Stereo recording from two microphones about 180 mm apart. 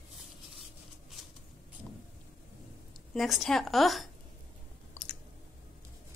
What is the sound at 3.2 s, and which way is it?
Speech, centre (ahead or behind).